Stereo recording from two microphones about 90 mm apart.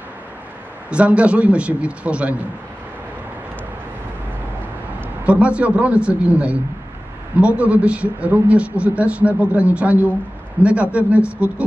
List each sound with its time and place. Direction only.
0.8 s speech: 15° right (ahead or behind)
5.2 s speech: 15° right (ahead or behind)